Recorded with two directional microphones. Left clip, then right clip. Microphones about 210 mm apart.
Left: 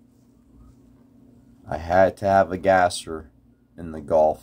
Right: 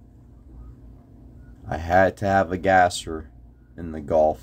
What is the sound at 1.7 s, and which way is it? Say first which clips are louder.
Speech: even; centre (ahead or behind).